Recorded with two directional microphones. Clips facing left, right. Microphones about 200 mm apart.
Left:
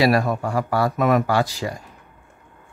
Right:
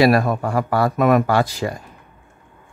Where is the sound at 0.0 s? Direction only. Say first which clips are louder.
Right 3 dB; 55° right (ahead or behind).